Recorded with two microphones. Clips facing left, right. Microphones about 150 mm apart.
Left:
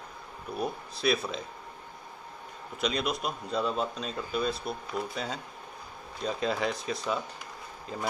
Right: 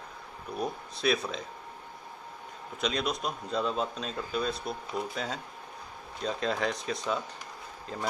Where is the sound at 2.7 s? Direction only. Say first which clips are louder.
Left 1 dB; 5° left (ahead or behind).